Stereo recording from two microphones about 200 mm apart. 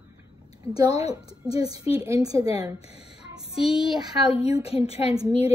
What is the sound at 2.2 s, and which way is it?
Speech, 15° right (ahead or behind).